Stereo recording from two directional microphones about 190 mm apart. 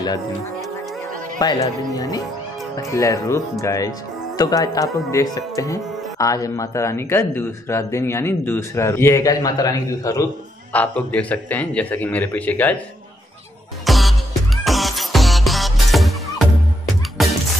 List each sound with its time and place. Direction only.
1.4 s speech: 20° left (ahead or behind)
10.7 s speech: 10° left (ahead or behind)
13.8 s music: centre (ahead or behind)